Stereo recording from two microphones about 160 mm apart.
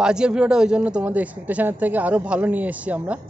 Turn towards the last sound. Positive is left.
turn(degrees=-10)  # may be behind; listen again after turning